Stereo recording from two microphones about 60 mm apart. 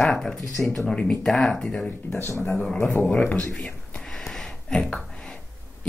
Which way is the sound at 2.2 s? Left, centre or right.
Left.